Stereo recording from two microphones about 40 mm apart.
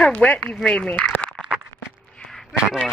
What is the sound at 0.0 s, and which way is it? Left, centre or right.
Speech, left.